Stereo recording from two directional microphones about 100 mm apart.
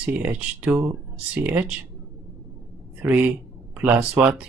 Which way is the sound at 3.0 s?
20° right (ahead or behind).